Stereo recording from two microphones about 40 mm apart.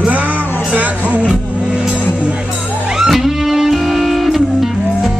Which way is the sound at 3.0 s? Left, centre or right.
Centre.